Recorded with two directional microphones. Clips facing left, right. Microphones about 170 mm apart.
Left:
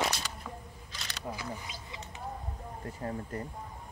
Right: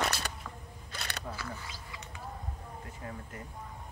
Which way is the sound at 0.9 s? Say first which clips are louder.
Right 5 dB; 55° right (ahead or behind).